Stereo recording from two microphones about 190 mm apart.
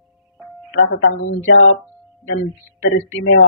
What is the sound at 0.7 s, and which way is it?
Speech, 80° left.